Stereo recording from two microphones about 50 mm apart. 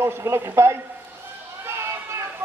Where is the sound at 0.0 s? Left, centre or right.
Right.